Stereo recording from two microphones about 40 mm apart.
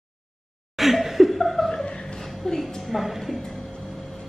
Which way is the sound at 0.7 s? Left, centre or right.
Centre.